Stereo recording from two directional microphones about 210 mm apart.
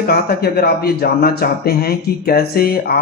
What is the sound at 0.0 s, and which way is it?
A man's voice, 45° left (ahead or behind).